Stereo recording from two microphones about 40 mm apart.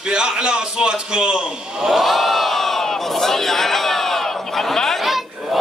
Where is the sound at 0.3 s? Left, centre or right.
Centre.